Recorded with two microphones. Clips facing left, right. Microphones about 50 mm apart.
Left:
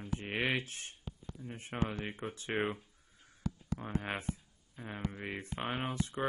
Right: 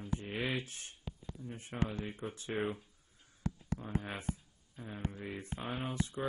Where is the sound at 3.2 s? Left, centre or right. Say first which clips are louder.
Left 4 dB; left.